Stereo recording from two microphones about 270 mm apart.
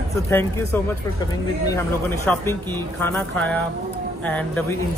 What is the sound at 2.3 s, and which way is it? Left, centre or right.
Speech, centre.